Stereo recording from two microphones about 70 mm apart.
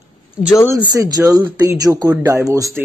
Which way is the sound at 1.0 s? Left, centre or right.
Right.